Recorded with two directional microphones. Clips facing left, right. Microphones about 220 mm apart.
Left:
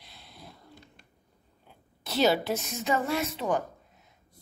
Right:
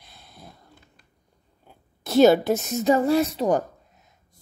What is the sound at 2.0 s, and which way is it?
A woman's voice, 50° right (ahead or behind).